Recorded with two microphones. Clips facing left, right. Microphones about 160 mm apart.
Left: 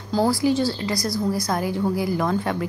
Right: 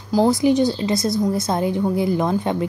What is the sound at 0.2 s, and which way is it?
A woman's voice, 20° right (ahead or behind).